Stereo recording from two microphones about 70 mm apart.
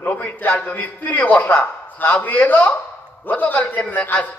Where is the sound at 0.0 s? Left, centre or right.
Left.